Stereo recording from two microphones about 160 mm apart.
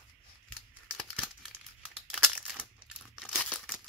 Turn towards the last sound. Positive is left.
turn(degrees=0)  # may be behind; listen again after turning